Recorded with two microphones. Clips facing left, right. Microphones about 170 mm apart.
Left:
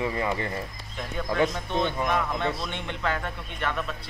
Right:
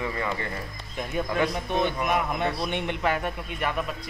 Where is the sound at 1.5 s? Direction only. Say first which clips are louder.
Right 1 dB; 15° right (ahead or behind).